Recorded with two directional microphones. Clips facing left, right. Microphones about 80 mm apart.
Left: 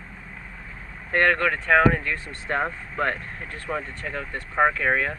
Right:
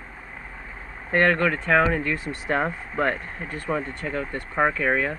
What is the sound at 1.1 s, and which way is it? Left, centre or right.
Speech, centre.